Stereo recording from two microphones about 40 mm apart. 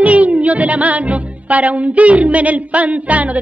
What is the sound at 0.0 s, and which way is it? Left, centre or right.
Music, right.